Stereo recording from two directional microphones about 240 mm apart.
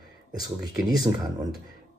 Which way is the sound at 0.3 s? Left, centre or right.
Centre.